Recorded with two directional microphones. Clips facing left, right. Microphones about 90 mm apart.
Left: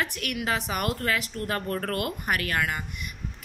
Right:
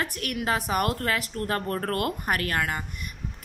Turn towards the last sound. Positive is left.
turn(degrees=-40)  # may be behind; listen again after turning